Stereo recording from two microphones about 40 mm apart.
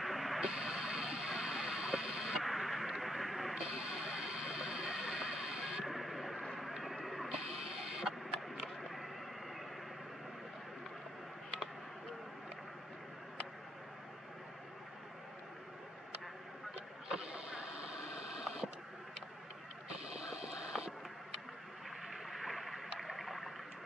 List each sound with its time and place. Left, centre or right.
0.0 s a sound: centre
0.4 s vehicle: right
2.4 s radio: centre
3.5 s music: right
5.9 s vehicle: centre
6.8 s music: centre
17.1 s vehicle: right
20.2 s vehicle: right
22.0 s a sound: centre